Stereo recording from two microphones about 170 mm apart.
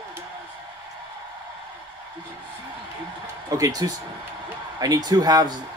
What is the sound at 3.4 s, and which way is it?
Speech, 20° right (ahead or behind).